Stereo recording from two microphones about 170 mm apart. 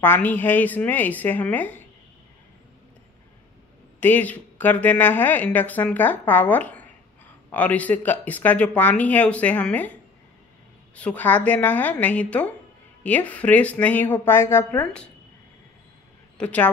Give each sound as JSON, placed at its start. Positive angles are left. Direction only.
{"t": 0.0, "sound": "a woman's voice", "side_deg": 10}
{"t": 4.0, "sound": "a woman's voice", "side_deg": 10}
{"t": 11.0, "sound": "a woman's voice", "side_deg": 10}
{"t": 16.3, "sound": "a man's voice", "side_deg": 10}